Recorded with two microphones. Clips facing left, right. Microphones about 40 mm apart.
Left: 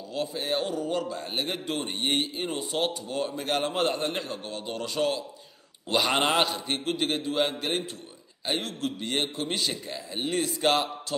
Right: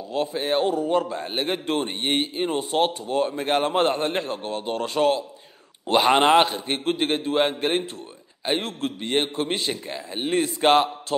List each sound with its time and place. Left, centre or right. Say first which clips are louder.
0.1 s a man's voice: right 6 dB; right